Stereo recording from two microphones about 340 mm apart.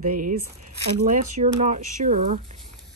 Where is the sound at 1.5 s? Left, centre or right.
Right.